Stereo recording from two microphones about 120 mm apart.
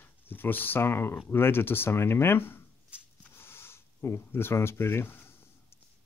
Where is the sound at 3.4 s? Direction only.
20° left (ahead or behind).